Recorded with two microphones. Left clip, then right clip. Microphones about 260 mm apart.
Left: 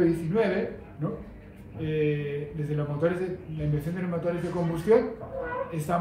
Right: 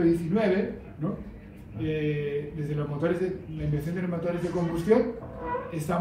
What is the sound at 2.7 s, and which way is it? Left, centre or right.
Speech, centre.